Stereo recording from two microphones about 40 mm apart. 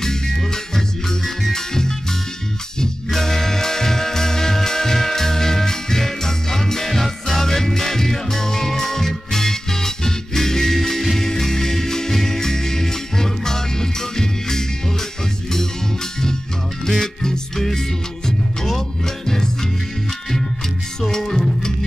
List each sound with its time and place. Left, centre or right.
0.0 s music: centre
17.0 s music: centre
21.1 s music: centre